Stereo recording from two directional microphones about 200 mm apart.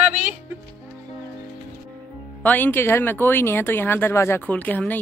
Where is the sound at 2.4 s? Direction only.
10° left (ahead or behind).